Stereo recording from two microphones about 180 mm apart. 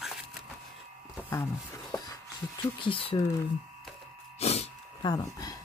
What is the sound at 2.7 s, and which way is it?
Speech, 30° left (ahead or behind).